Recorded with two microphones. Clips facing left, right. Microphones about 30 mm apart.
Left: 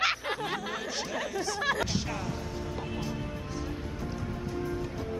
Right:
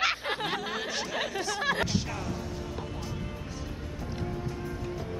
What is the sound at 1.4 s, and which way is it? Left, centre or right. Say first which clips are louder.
Speech: even; centre.